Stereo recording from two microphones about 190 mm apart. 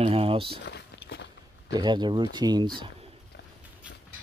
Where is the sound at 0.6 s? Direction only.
65° left (ahead or behind).